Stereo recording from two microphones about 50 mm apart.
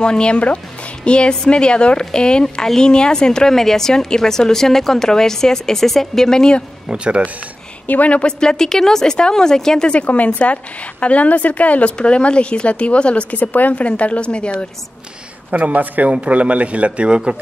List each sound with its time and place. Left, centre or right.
0.0 s a woman's voice: centre
6.9 s a man's voice: right
7.8 s speech: left; by 9.9 s centre
9.9 s a woman's voice: left
15.5 s a man's voice: right